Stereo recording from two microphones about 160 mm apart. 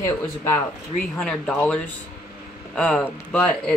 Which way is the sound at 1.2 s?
5° left (ahead or behind).